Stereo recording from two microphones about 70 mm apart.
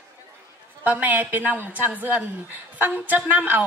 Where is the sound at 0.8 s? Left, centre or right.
Right.